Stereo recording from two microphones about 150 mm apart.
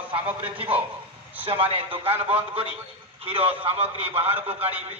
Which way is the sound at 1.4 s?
40° right (ahead or behind).